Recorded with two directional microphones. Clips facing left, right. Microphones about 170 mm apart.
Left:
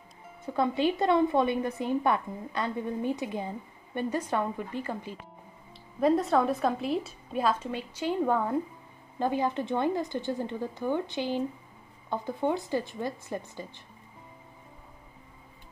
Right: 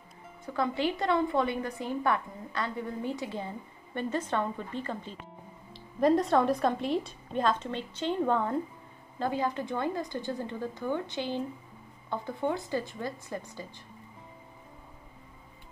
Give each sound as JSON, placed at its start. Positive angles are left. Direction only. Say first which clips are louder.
{"t": 0.5, "sound": "a woman's voice", "louder": "left 3 dB", "side_deg": 20}